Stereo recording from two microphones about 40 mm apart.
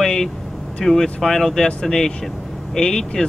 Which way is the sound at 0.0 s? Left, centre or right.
Centre.